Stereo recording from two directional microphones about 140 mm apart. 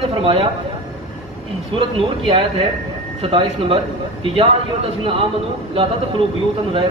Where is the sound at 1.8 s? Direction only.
40° right (ahead or behind).